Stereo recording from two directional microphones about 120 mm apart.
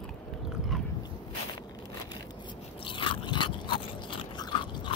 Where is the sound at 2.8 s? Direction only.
45° left (ahead or behind).